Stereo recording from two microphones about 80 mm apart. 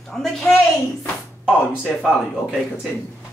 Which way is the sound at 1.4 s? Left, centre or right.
Centre.